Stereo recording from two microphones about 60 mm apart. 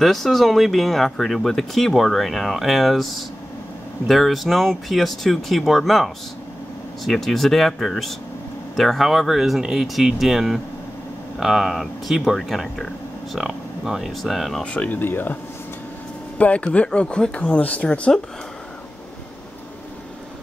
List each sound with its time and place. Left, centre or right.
0.0 s speech: centre
14.6 s speech: centre
14.9 s speech: left
16.3 s speech: left